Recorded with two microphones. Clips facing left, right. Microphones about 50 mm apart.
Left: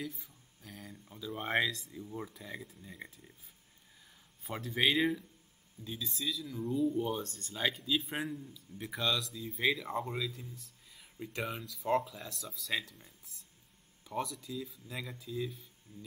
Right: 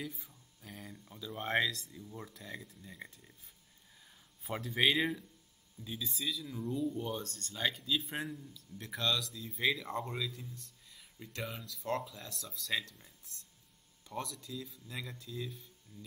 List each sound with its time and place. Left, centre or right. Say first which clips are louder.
0.0 s speech: left 2 dB; centre
4.4 s a man's voice: even; centre
15.9 s a sound: left 2 dB; left